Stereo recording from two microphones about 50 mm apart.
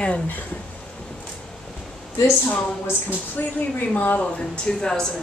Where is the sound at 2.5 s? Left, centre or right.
Left.